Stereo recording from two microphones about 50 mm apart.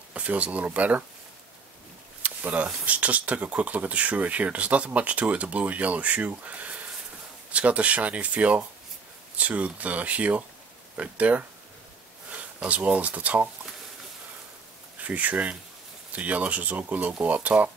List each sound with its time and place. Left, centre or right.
0.1 s speech: right
2.2 s speech: right
15.0 s speech: right